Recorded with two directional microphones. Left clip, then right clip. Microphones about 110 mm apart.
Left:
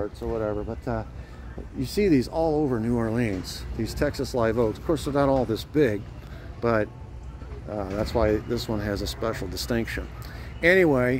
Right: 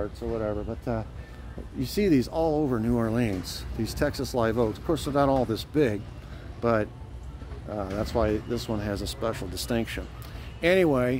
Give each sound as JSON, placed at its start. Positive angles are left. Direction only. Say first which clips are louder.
{"t": 0.0, "sound": "speech", "louder": "left 2 dB", "side_deg": -25}